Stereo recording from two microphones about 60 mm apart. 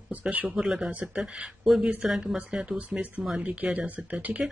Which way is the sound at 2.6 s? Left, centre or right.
Right.